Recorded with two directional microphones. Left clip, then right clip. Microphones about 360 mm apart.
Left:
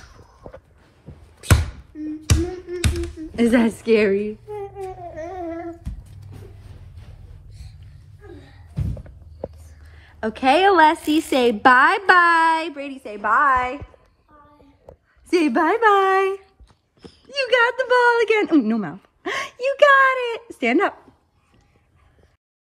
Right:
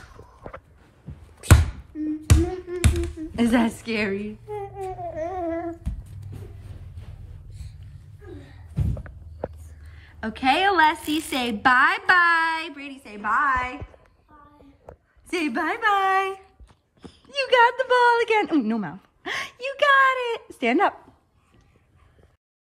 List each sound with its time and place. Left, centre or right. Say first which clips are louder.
2.2 s music: left 3 dB; centre
3.8 s a woman's voice: left 9 dB; centre
4.5 s child singing: left 1 dB; centre
9.8 s a woman's voice: left 6 dB; centre
15.2 s a woman's voice: left 7 dB; centre